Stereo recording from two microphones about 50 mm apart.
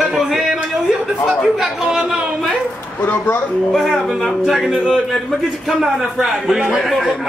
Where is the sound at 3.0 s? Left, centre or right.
Left.